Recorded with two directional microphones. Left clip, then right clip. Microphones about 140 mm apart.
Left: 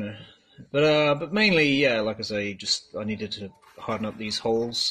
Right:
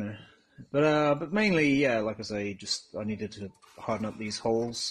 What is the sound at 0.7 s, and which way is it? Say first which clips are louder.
Speech: left 4 dB; 35° right (ahead or behind).